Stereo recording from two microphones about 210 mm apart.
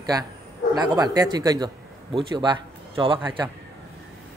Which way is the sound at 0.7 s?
20° right (ahead or behind).